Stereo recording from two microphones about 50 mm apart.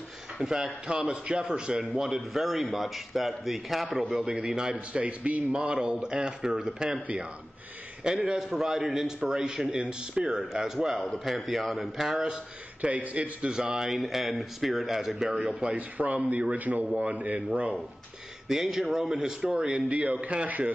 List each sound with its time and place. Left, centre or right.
0.4 s speech: centre
0.8 s a man's voice: right
2.3 s a man's voice: centre
4.1 s speech: centre
4.7 s a man's voice: right
8.4 s a man's voice: centre
12.8 s a man's voice: right
13.8 s a man's voice: centre
15.7 s a man's voice: right
18.5 s a man's voice: centre; by 20.7 s right